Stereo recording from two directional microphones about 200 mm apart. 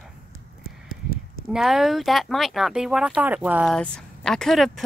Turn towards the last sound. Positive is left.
turn(degrees=0)  # may be behind; listen again after turning